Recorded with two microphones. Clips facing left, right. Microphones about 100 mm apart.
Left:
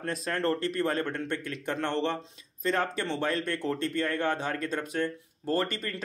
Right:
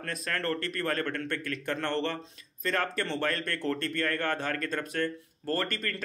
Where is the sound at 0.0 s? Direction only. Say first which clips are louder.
Left 4 dB; 25° left (ahead or behind).